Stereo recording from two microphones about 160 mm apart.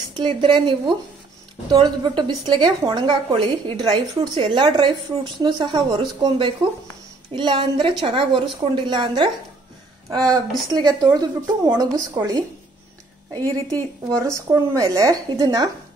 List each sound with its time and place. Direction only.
0.1 s a woman's voice: 30° right (ahead or behind)
14.0 s a woman's voice: 20° right (ahead or behind)